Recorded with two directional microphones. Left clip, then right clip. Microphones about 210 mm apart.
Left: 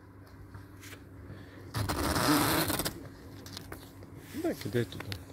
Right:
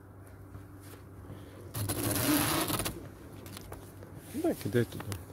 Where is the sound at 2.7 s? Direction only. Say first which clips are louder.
Left 1 dB; 5° left (ahead or behind).